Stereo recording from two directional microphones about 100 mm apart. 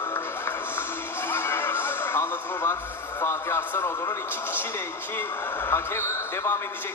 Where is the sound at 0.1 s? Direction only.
20° left (ahead or behind).